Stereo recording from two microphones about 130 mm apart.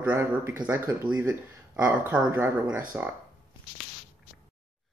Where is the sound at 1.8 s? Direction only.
5° right (ahead or behind).